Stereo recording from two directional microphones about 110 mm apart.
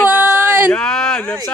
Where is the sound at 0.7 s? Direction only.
5° left (ahead or behind).